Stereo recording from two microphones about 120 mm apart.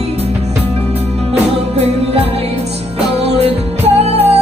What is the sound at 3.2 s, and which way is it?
Music, 60° right (ahead or behind).